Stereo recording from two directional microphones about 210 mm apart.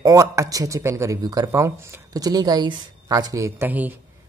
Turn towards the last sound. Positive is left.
turn(degrees=-10)  # may be behind; listen again after turning